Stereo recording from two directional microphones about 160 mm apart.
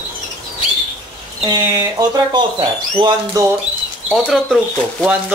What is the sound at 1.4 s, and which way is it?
Speech, 25° right (ahead or behind).